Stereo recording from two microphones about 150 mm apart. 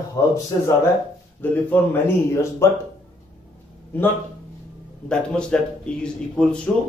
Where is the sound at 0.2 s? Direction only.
20° left (ahead or behind).